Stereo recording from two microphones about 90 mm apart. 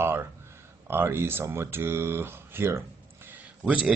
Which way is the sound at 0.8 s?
25° right (ahead or behind).